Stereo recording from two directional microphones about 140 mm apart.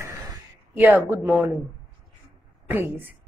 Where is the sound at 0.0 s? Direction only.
15° right (ahead or behind).